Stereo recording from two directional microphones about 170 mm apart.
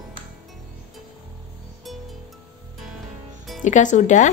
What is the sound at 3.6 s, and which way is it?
Speech, 45° left (ahead or behind).